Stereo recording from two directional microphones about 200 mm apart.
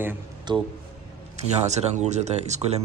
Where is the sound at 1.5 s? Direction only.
35° right (ahead or behind).